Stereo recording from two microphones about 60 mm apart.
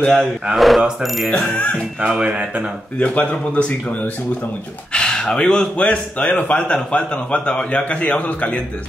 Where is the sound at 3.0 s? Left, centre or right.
Left.